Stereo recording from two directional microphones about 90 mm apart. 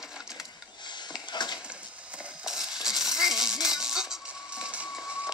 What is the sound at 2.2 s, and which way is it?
Music, 5° right (ahead or behind).